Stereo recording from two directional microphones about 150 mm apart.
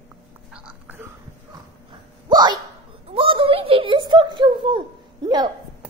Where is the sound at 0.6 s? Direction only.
10° right (ahead or behind).